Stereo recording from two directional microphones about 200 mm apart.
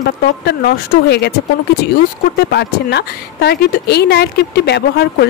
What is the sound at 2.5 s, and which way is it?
Speech, 55° left (ahead or behind).